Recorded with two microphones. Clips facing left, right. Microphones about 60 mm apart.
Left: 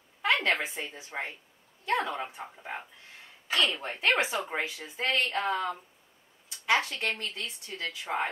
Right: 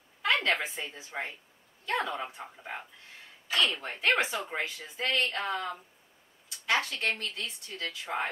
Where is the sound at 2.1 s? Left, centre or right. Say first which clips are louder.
Left 1 dB; centre.